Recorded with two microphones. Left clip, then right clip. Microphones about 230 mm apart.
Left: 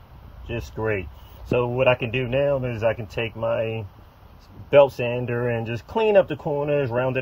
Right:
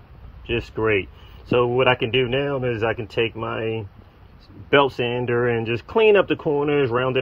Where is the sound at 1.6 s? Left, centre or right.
Right.